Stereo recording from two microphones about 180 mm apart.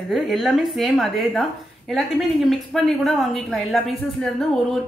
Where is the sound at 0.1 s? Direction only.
Centre (ahead or behind).